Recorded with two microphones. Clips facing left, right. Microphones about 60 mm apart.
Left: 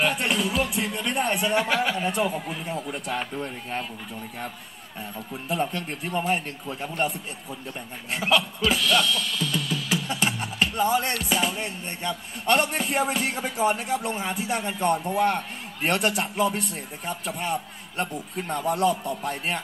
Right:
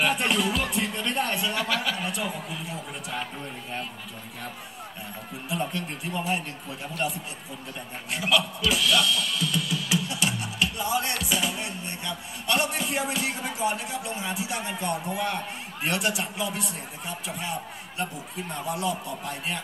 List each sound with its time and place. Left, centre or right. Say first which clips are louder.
0.0 s music: even; centre
1.0 s speech: left 4 dB; centre
1.4 s speech: left 4 dB; left
2.7 s speech: left 8 dB; left
5.5 s music: left 3 dB; left
8.1 s music: left 2 dB; left
8.7 s drum kit: even; centre
9.7 s music: left 1 dB; left
18.5 s speech: left 6 dB; left